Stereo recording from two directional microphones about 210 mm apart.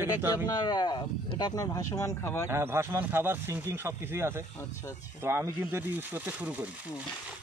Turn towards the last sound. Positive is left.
turn(degrees=-5)  # may be behind; listen again after turning